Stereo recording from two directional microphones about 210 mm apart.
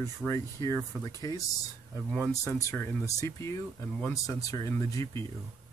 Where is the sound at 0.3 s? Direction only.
15° left (ahead or behind).